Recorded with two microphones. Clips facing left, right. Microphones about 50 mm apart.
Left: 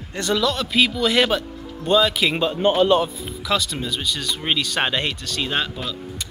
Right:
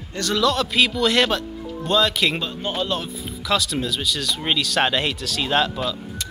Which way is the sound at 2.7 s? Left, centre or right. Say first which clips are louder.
Left 8 dB; centre.